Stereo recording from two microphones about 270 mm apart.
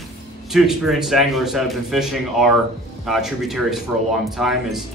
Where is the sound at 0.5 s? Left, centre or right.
Centre.